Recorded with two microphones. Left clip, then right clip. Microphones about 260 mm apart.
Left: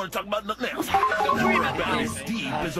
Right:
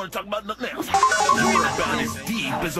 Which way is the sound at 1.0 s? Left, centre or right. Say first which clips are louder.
Right 7 dB; right.